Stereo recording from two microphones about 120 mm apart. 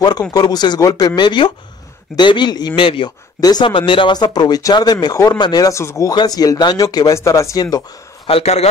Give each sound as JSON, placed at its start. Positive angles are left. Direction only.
{"t": 0.3, "sound": "speech", "side_deg": 35}
{"t": 3.3, "sound": "speech", "side_deg": 35}
{"t": 8.3, "sound": "a man's voice", "side_deg": 60}